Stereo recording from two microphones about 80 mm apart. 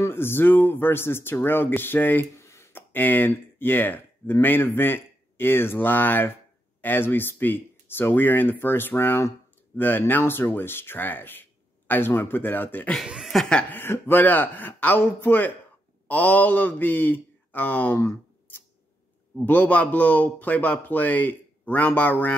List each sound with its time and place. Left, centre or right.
0.0 s a man's voice: left
2.4 s a sound: left
2.9 s a man's voice: left
13.0 s speech: centre
13.3 s speech: centre
13.7 s a man's voice: left
17.9 s a sound: left
19.4 s a man's voice: centre